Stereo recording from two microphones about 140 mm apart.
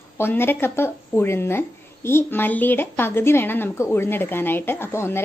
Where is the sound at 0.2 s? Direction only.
15° left (ahead or behind).